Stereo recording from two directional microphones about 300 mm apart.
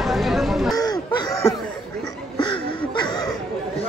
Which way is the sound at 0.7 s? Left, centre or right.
Centre.